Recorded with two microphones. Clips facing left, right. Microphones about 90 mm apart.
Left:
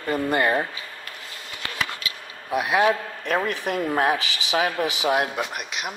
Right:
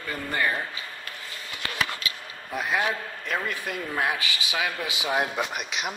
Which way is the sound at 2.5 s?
15° left (ahead or behind).